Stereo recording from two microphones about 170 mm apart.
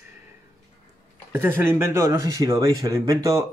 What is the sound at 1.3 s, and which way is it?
Speech, 10° right (ahead or behind).